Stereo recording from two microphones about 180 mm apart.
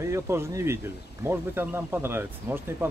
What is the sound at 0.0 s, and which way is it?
Speech, 15° right (ahead or behind).